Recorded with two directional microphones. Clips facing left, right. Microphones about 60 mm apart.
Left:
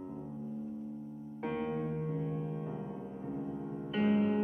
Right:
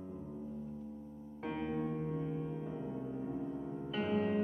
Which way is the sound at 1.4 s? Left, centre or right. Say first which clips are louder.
Left 3 dB; centre.